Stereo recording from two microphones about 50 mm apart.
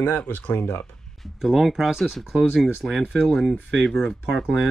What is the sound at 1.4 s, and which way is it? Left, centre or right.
Speech, centre.